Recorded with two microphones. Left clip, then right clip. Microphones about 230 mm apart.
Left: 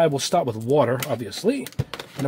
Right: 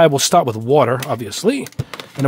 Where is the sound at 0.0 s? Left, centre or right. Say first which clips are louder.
Right 8 dB; right.